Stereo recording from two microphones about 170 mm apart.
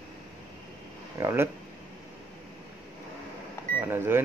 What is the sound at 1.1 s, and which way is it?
Speech, 15° right (ahead or behind).